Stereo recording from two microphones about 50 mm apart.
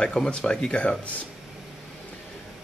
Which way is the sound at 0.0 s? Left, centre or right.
Centre.